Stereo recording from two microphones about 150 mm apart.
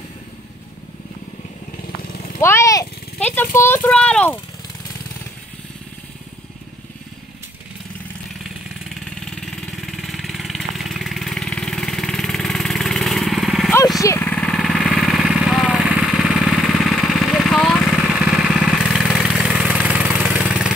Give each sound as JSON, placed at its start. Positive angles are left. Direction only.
{"t": 2.3, "sound": "speech", "side_deg": 20}
{"t": 9.8, "sound": "vehicle", "side_deg": 0}
{"t": 13.9, "sound": "vehicle", "side_deg": 20}
{"t": 14.3, "sound": "vehicle", "side_deg": 5}